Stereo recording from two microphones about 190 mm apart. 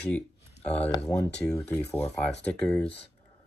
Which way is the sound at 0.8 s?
20° left (ahead or behind).